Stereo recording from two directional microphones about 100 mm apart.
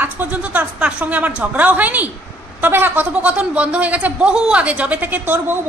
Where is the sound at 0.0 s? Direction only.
15° right (ahead or behind).